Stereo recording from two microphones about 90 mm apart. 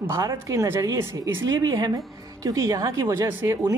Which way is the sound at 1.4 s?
50° right (ahead or behind).